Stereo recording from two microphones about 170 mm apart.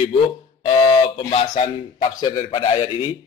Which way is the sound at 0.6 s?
35° left (ahead or behind).